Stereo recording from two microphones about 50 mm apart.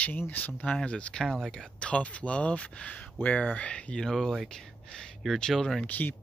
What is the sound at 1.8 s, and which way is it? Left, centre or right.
Speech, left.